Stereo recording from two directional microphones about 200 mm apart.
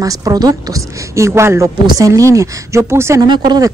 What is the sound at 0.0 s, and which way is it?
A woman's voice, 20° right (ahead or behind).